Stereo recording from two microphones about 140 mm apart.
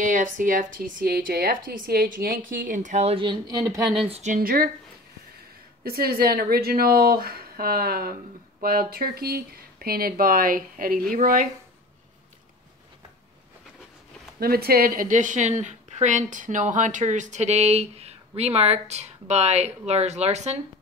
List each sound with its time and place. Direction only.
0.0 s speech: 70° right (ahead or behind); by 3.8 s 25° right (ahead or behind)
4.0 s speech: 45° right (ahead or behind)
4.3 s speech: 90° right
5.9 s speech: 90° right; by 11.4 s 75° right (ahead or behind)
14.4 s speech: 90° right; by 20.6 s 50° right (ahead or behind)